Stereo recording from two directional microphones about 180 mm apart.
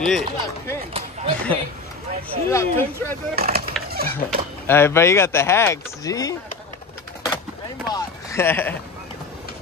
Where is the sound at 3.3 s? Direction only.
55° right (ahead or behind).